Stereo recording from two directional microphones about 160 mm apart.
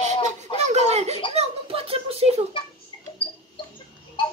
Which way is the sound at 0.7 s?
45° right (ahead or behind).